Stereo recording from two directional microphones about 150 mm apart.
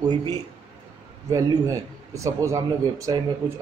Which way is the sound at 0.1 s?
30° right (ahead or behind).